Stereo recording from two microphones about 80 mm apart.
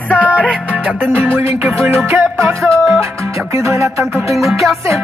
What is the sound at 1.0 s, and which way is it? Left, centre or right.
Music, right.